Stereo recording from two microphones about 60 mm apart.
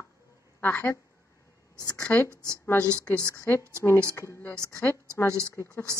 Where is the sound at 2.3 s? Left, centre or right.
Right.